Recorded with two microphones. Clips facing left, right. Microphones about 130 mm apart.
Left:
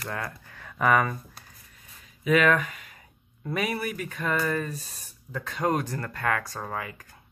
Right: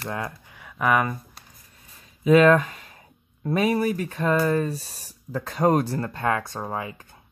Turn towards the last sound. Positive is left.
turn(degrees=-25)  # may be behind; listen again after turning